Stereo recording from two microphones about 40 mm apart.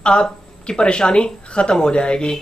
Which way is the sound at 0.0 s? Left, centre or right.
Left.